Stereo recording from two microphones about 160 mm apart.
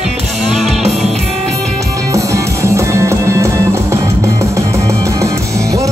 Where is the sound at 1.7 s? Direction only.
20° right (ahead or behind).